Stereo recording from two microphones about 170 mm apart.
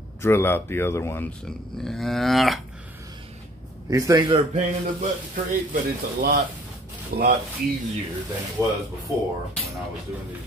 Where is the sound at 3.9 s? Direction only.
20° right (ahead or behind).